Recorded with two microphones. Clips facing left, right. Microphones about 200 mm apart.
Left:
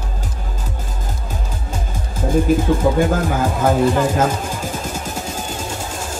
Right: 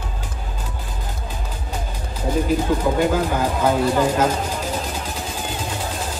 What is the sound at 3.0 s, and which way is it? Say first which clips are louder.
Speech: left 1 dB; 50° left (ahead or behind).